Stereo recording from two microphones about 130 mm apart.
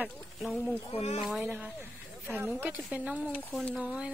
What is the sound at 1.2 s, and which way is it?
Speech, 10° right (ahead or behind).